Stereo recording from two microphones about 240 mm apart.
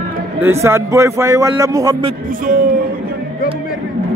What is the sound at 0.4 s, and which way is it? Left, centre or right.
A man's voice, centre.